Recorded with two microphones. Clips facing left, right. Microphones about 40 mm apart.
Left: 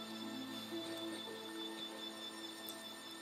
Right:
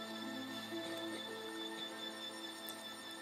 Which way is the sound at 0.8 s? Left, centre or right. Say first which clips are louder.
Right 1 dB; centre.